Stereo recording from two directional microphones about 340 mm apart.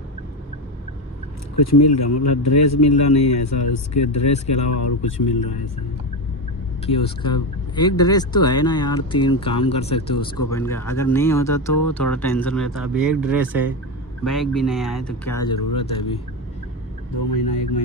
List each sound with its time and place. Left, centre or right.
1.6 s speech: left
6.9 s speech: centre
10.1 s speech: left
10.5 s speech: centre
15.4 s speech: centre
17.2 s speech: left